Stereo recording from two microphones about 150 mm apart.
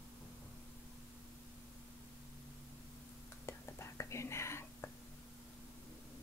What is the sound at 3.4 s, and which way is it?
Whispering, 20° left (ahead or behind).